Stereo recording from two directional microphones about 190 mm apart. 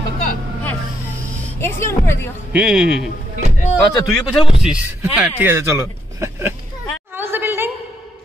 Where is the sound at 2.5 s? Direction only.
5° right (ahead or behind).